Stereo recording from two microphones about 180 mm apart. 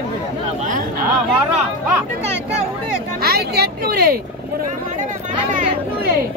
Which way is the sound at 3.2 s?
60° right (ahead or behind).